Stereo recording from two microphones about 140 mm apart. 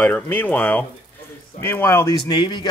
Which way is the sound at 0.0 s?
15° left (ahead or behind).